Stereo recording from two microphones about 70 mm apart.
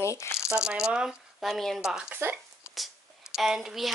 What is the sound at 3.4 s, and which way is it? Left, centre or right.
Speech, centre.